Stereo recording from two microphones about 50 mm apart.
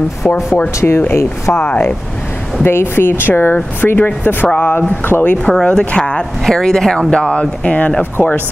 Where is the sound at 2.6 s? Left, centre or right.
Left.